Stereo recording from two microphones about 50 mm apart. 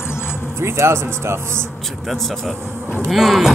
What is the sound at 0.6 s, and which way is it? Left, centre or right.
Speech, right.